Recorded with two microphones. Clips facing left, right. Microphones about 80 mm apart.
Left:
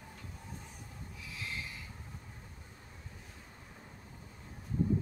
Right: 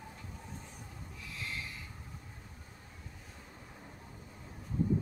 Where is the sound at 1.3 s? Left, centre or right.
Centre.